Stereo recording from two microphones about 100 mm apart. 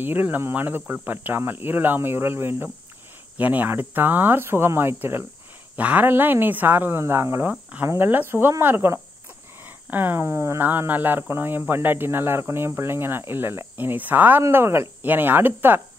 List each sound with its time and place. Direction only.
0.0 s speech: 20° right (ahead or behind)